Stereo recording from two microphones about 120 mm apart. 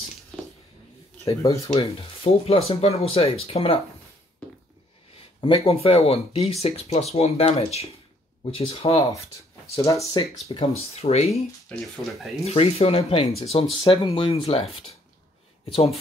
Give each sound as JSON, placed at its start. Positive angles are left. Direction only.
{"t": 1.2, "sound": "speech", "side_deg": 30}
{"t": 1.7, "sound": "speech", "side_deg": 50}
{"t": 5.4, "sound": "speech", "side_deg": 50}
{"t": 9.8, "sound": "speech", "side_deg": 25}
{"t": 10.5, "sound": "speech", "side_deg": 55}
{"t": 11.7, "sound": "speech", "side_deg": 0}
{"t": 12.4, "sound": "speech", "side_deg": 55}